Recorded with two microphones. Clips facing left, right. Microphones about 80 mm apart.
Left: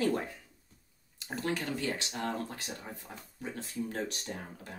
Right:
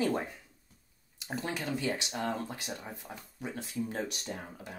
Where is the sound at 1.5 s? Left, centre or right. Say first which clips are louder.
Right 1 dB; centre.